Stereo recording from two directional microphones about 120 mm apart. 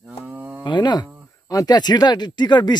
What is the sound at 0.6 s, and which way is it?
Speech, 40° left (ahead or behind).